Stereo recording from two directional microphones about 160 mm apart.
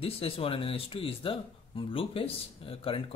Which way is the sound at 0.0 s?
35° left (ahead or behind).